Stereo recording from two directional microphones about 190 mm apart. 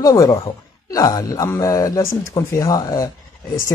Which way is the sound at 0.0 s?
15° left (ahead or behind).